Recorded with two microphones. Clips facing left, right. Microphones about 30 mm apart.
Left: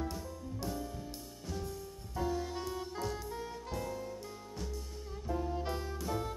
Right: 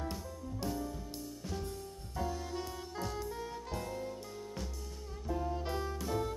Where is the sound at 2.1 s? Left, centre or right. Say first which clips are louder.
Left 2 dB; centre.